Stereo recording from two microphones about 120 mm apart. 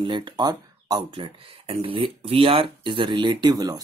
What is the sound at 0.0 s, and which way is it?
Speech, 40° right (ahead or behind).